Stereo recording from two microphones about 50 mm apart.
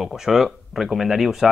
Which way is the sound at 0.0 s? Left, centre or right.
Centre.